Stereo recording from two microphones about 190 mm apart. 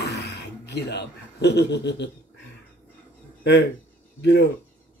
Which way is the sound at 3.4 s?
65° left (ahead or behind).